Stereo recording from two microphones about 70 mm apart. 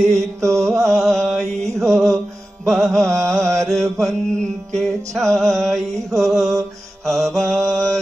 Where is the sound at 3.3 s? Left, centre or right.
Right.